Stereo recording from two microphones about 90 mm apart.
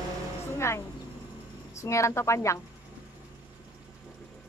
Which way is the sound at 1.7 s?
35° left (ahead or behind).